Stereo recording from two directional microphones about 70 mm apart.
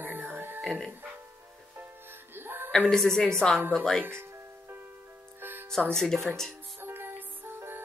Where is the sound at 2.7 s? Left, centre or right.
Centre.